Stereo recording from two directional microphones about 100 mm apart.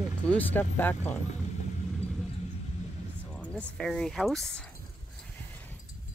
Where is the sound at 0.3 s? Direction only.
20° left (ahead or behind).